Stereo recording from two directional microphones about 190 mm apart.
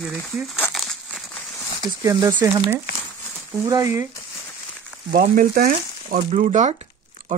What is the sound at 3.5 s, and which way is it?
Speech, 15° right (ahead or behind).